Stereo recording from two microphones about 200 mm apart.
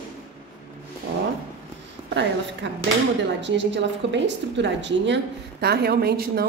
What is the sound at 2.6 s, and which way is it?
A woman's voice, 65° right (ahead or behind).